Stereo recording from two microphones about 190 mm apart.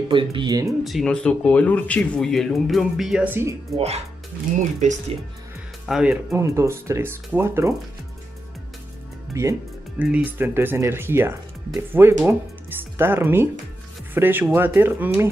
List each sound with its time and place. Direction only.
0.1 s speech: 25° right (ahead or behind)
0.8 s speech: centre (ahead or behind)
3.7 s speech: 35° right (ahead or behind)
5.9 s speech: 5° right (ahead or behind)
6.4 s speech: 15° right (ahead or behind)
9.3 s music: 15° right (ahead or behind)
10.0 s speech: 10° right (ahead or behind)